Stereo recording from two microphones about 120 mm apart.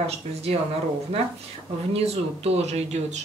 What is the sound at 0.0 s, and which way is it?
Speech, 60° right (ahead or behind).